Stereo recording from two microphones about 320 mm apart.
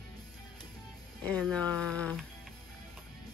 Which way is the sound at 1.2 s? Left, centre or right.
Centre.